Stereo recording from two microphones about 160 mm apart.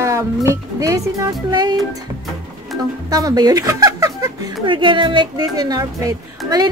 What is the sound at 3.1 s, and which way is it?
Speech, 25° right (ahead or behind).